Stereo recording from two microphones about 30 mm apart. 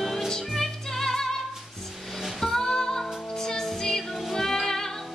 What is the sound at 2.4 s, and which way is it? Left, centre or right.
Music, centre.